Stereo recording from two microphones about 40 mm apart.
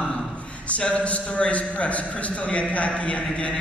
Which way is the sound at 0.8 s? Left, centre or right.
Left.